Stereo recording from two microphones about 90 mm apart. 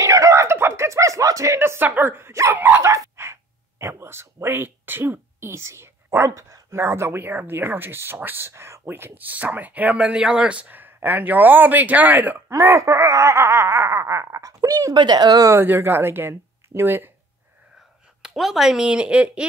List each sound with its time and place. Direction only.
0.0 s a sound: 35° right (ahead or behind)
2.5 s dog: 20° right (ahead or behind)
2.8 s a man's voice: 30° right (ahead or behind)
12.4 s laughter: 35° right (ahead or behind)
15.0 s speech: 50° right (ahead or behind)
15.5 s a man's voice: 25° right (ahead or behind)
18.2 s a woman's voice: 5° right (ahead or behind)